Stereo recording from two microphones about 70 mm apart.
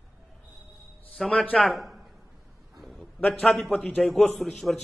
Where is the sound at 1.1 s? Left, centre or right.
Centre.